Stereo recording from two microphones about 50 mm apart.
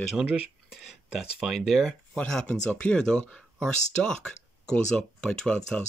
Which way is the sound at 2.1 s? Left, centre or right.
Centre.